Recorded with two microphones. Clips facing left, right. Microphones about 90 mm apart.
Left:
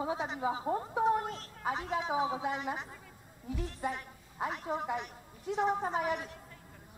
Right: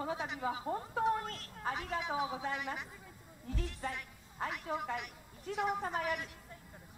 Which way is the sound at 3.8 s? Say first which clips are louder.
Left 5 dB; 15° left (ahead or behind).